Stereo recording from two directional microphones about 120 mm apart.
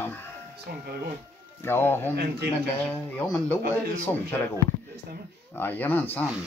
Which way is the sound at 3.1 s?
10° left (ahead or behind).